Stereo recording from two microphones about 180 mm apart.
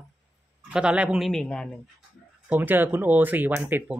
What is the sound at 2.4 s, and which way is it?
Speech, 10° right (ahead or behind).